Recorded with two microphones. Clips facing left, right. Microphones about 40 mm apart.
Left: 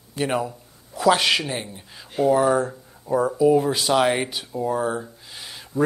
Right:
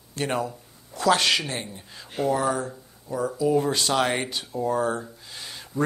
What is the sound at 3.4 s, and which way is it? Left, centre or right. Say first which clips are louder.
Speech: left 3 dB; centre.